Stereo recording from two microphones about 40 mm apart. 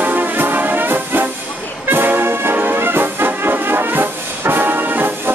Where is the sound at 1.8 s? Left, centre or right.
Right.